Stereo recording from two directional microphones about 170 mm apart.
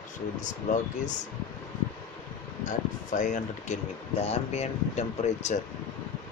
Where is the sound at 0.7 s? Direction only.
50° left (ahead or behind).